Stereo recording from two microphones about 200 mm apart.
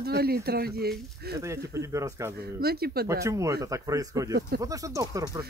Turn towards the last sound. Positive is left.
turn(degrees=-15)  # may be behind; listen again after turning